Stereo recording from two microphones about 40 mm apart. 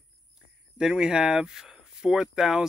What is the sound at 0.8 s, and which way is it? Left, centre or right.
Speech, centre.